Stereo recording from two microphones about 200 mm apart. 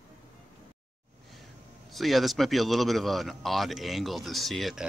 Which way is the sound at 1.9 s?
Centre (ahead or behind).